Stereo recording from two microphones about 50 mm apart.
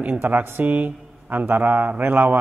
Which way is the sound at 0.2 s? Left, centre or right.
Right.